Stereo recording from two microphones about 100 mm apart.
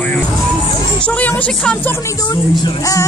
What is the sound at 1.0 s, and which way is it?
Speech, 15° left (ahead or behind).